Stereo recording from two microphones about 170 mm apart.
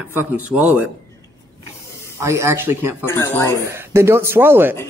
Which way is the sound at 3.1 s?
15° left (ahead or behind).